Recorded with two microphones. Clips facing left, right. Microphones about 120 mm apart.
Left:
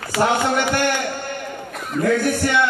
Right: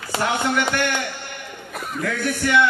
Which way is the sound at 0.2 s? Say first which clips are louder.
Left 4 dB; 30° left (ahead or behind).